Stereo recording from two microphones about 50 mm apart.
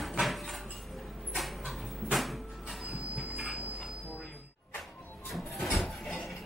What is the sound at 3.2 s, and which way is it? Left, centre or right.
Train, centre.